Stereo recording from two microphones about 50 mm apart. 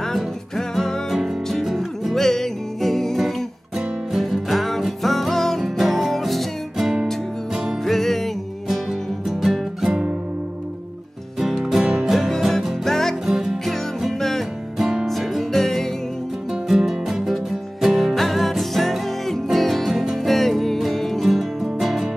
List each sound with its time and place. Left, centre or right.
0.0 s music: centre
7.8 s music: centre
9.3 s music: centre
9.8 s music: centre
11.3 s music: centre
13.3 s music: centre
13.7 s music: centre
14.8 s music: centre
16.6 s music: centre